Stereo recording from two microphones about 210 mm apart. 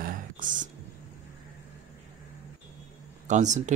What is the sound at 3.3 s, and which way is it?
Speech, 35° right (ahead or behind).